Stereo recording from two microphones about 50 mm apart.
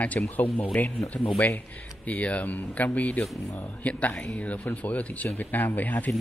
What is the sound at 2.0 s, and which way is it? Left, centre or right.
Speech, left.